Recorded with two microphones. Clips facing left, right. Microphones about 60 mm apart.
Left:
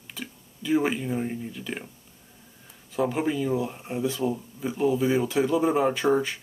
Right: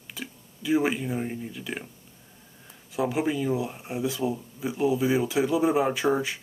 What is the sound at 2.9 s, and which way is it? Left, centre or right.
Speech, centre.